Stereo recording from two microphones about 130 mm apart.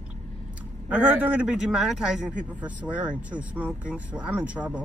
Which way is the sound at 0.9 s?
10° right (ahead or behind).